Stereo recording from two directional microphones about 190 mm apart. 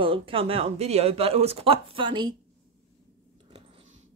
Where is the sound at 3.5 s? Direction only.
25° right (ahead or behind).